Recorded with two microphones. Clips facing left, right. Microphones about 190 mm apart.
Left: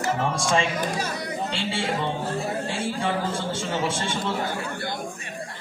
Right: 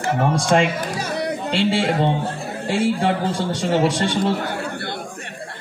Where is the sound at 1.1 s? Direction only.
65° right (ahead or behind).